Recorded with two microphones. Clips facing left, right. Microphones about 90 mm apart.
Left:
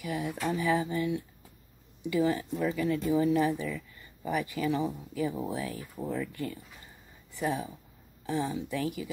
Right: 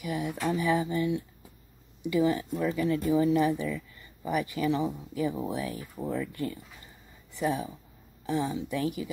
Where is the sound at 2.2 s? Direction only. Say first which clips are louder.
Right 2 dB; 15° right (ahead or behind).